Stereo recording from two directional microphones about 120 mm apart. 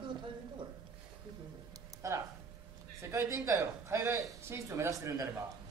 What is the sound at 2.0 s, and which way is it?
Speech, 25° right (ahead or behind).